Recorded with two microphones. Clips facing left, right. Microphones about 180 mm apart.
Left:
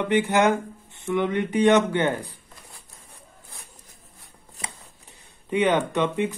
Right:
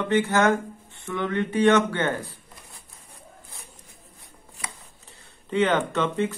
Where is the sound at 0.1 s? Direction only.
15° left (ahead or behind).